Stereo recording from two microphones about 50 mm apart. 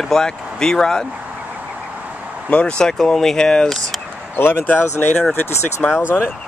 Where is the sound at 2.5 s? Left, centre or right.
Left.